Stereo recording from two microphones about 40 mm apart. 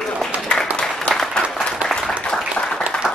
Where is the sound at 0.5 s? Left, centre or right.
Centre.